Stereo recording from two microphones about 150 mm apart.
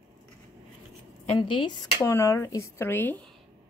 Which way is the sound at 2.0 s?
20° left (ahead or behind).